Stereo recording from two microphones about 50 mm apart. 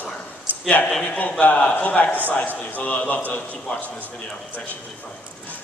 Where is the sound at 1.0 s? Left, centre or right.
Left.